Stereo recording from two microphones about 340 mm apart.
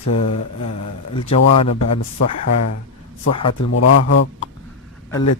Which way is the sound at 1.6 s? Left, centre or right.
Left.